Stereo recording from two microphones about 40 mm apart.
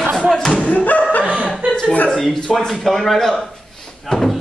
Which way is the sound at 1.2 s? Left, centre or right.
Right.